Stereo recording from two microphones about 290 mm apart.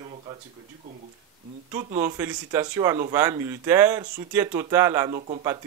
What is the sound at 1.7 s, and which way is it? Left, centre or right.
Speech, centre.